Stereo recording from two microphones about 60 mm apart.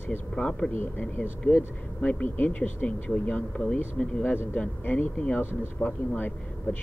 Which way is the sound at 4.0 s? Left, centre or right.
Centre.